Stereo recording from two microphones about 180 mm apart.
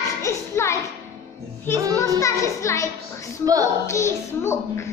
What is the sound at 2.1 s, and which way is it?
Speech, 15° left (ahead or behind).